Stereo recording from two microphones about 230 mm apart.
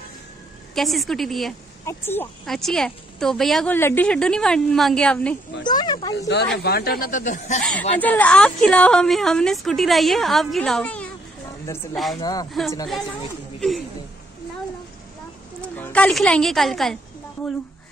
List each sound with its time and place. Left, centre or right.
0.7 s speech: centre
5.6 s speech: centre
6.1 s speech: left
8.0 s speech: centre
12.2 s speech: centre
12.4 s speech: centre
13.6 s a sound: centre
15.7 s a woman's voice: centre